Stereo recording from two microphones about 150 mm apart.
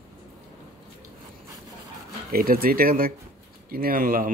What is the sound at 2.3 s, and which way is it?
Speech, 80° right.